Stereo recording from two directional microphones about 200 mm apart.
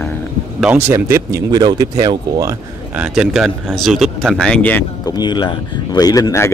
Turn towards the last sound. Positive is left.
turn(degrees=15)  # may be behind; listen again after turning